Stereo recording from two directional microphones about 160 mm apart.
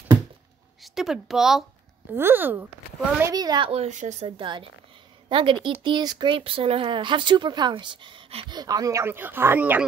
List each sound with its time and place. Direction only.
0.8 s speech: centre (ahead or behind)
2.1 s a woman's voice: 15° right (ahead or behind); by 4.3 s 45° right (ahead or behind)
4.4 s a woman's voice: 30° right (ahead or behind); by 9.8 s 10° right (ahead or behind)